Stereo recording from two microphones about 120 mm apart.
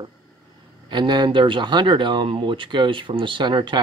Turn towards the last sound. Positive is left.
turn(degrees=-40)  # may be behind; listen again after turning